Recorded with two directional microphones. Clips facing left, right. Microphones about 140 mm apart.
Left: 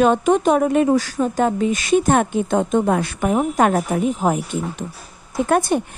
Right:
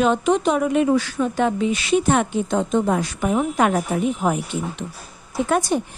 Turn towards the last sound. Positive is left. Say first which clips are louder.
# left 3 dB
turn(degrees=55)  # may be behind; listen again after turning